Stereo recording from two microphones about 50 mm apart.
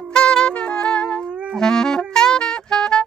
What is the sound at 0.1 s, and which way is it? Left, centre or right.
Music, centre.